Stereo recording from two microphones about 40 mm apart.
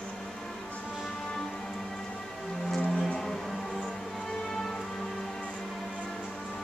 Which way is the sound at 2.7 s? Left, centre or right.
Centre.